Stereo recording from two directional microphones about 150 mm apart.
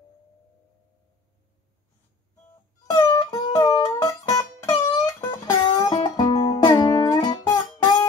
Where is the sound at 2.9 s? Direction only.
25° left (ahead or behind).